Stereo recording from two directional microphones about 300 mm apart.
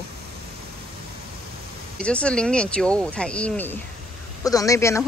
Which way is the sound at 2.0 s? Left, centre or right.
Centre.